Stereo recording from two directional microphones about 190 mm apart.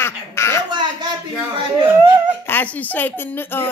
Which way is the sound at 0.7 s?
25° right (ahead or behind).